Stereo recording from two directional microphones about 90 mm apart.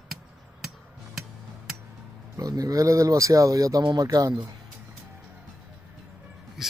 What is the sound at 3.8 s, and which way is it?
Speech, 50° right (ahead or behind).